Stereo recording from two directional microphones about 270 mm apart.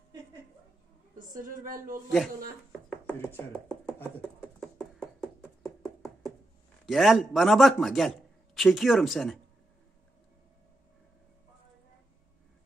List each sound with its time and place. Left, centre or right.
1.1 s a woman's voice: right
2.9 s chopping: centre
4.6 s a sound: centre
6.9 s speech: centre